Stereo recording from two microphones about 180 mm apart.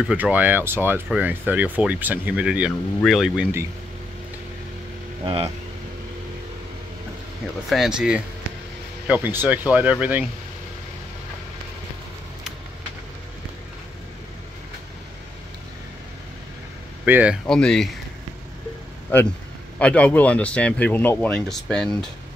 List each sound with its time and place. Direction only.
0.0 s speech: 5° right (ahead or behind)
5.2 s speech: 30° right (ahead or behind)
7.7 s speech: centre (ahead or behind)
17.0 s speech: 10° right (ahead or behind)
17.5 s speech: 5° left (ahead or behind)
19.1 s speech: 10° left (ahead or behind)